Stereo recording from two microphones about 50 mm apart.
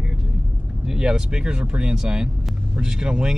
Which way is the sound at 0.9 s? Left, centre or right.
Centre.